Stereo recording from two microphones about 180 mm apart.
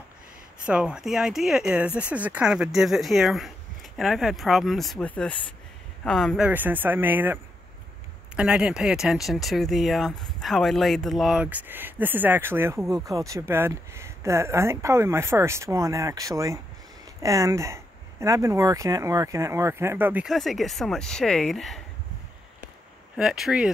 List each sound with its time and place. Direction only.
0.7 s speech: 5° right (ahead or behind)
8.4 s speech: 5° right (ahead or behind)
23.1 s speech: centre (ahead or behind)